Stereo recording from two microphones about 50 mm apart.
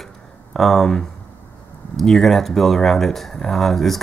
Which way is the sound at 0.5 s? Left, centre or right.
Centre.